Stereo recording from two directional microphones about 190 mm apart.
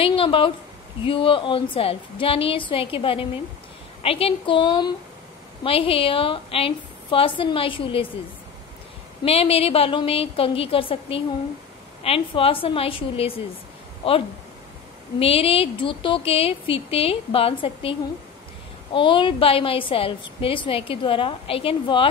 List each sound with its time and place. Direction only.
0.0 s a woman's voice: 30° left (ahead or behind)
9.2 s a woman's voice: 30° left (ahead or behind)
18.9 s a woman's voice: 25° left (ahead or behind)